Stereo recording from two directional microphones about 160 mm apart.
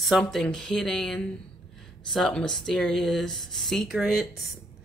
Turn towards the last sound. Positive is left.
turn(degrees=0)  # may be behind; listen again after turning